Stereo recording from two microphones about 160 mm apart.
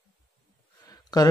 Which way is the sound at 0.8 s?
25° left (ahead or behind).